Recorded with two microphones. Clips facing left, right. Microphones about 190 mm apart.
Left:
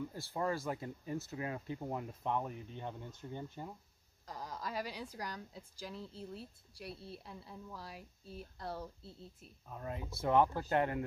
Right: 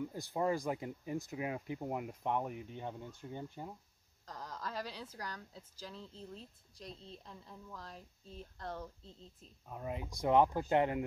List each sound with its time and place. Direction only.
0.0 s speech: 15° right (ahead or behind)
4.3 s a woman's voice: 10° left (ahead or behind)
9.7 s speech: 15° right (ahead or behind)